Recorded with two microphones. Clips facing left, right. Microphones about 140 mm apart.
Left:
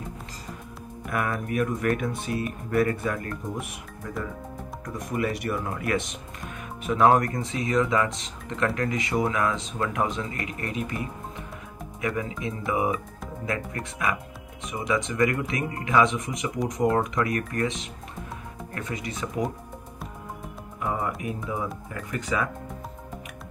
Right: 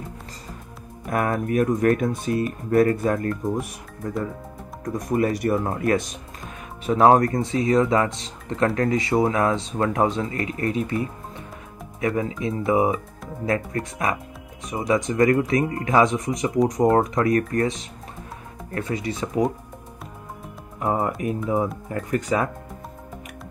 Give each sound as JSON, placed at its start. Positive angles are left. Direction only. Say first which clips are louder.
{"t": 1.0, "sound": "speech", "louder": "right 5 dB", "side_deg": -40}
{"t": 4.8, "sound": "speech", "louder": "right 6 dB", "side_deg": -40}
{"t": 20.8, "sound": "speech", "louder": "right 5 dB", "side_deg": -40}